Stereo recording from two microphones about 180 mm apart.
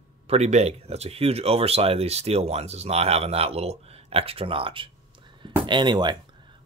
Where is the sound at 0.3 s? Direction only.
40° right (ahead or behind).